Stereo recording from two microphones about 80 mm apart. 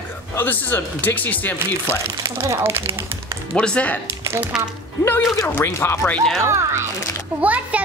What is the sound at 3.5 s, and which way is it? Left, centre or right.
Speech, centre.